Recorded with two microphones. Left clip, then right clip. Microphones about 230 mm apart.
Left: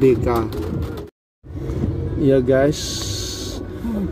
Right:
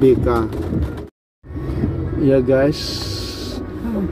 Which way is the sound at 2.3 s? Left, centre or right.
Left.